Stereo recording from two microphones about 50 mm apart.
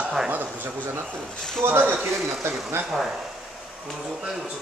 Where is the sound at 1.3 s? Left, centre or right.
Centre.